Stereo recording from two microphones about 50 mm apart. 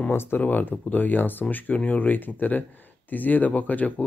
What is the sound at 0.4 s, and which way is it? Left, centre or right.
Speech, left.